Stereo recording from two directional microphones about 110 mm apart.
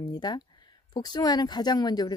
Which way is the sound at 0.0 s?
40° left (ahead or behind).